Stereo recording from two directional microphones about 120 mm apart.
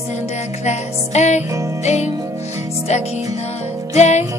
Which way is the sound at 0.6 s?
70° left (ahead or behind).